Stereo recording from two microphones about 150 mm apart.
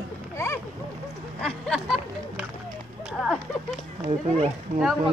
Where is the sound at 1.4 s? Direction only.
5° left (ahead or behind).